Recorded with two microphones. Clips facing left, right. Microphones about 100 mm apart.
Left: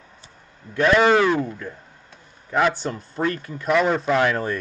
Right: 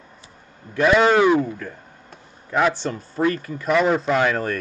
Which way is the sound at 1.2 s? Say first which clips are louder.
Right 3 dB; 15° right (ahead or behind).